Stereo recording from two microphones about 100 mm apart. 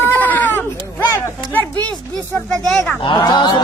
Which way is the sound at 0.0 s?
20° left (ahead or behind).